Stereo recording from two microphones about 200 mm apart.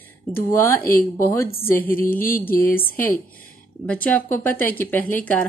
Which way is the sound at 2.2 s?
45° left (ahead or behind).